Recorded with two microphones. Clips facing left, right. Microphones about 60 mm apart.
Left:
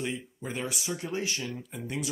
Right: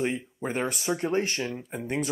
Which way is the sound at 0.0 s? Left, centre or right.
Right.